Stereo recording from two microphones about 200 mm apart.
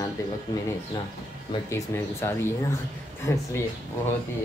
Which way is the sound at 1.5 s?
15° left (ahead or behind).